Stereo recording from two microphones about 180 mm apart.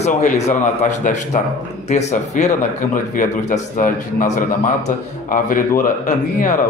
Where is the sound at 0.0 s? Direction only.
40° left (ahead or behind).